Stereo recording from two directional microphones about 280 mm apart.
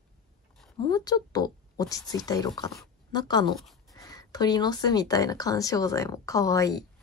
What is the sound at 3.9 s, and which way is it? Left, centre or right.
Speech, centre.